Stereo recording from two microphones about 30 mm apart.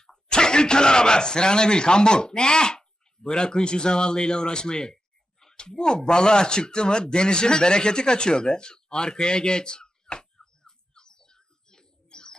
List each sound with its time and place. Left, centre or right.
0.0 s speech: left
4.9 s a sound: centre
5.7 s speech: left
10.3 s bird: left